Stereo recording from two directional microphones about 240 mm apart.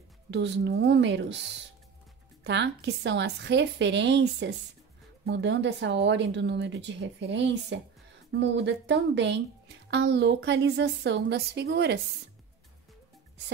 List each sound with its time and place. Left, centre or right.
0.3 s a woman's voice: right
2.4 s a woman's voice: right